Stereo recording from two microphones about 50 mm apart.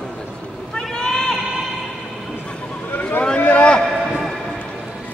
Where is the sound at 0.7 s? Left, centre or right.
Centre.